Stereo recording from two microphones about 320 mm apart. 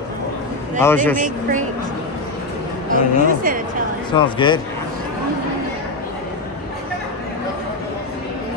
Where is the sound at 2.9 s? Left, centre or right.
Right.